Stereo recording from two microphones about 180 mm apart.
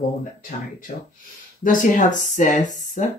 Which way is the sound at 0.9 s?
45° left (ahead or behind).